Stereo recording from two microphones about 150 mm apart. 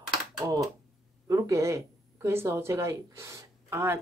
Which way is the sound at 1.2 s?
20° right (ahead or behind).